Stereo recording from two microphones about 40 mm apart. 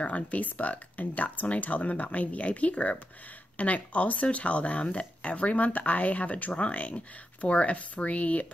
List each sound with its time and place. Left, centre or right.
0.0 s speech: left